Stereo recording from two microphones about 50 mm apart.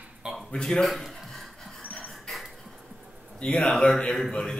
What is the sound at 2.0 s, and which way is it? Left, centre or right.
Music, centre.